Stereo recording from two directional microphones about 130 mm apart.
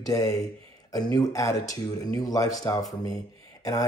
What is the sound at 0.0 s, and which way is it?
Speech, 25° left (ahead or behind).